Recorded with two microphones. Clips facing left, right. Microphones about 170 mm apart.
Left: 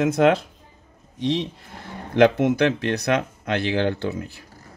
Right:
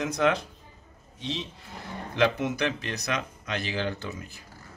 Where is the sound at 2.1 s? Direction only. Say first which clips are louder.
Left 9 dB; 55° left (ahead or behind).